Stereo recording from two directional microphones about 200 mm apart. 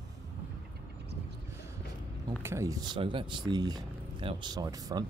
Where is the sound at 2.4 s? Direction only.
15° right (ahead or behind).